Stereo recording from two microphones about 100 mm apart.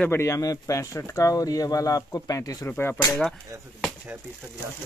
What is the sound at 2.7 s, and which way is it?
Speech, 20° left (ahead or behind).